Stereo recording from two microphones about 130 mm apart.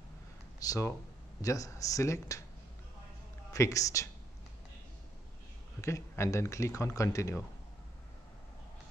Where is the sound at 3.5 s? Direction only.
25° left (ahead or behind).